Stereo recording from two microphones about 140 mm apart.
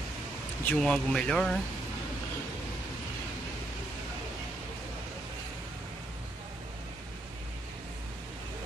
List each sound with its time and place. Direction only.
0.7 s speech: 10° left (ahead or behind)